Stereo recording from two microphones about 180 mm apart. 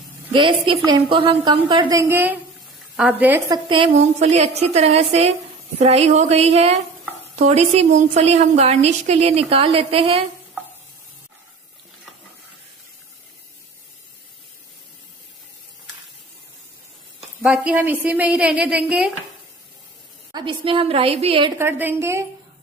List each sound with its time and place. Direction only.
0.3 s a woman's voice: 25° right (ahead or behind); by 3.4 s 10° right (ahead or behind)
3.5 s a woman's voice: 30° right (ahead or behind)
17.4 s a woman's voice: 5° right (ahead or behind)
20.3 s a woman's voice: 30° right (ahead or behind)
21.5 s a woman's voice: 10° right (ahead or behind)